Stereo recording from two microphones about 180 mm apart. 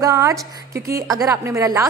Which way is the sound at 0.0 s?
15° right (ahead or behind).